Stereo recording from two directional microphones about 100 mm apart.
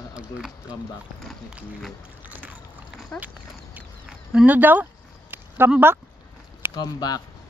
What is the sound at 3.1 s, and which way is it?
Duck, 10° left (ahead or behind).